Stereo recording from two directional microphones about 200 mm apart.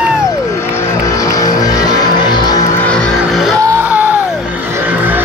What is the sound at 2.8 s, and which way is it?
Music, centre (ahead or behind).